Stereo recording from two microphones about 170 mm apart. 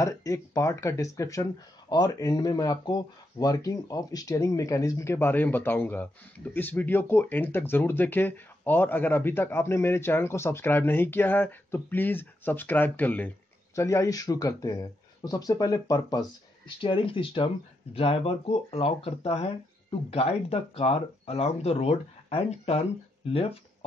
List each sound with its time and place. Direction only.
0.0 s speech: 20° left (ahead or behind); by 23.6 s 35° left (ahead or behind)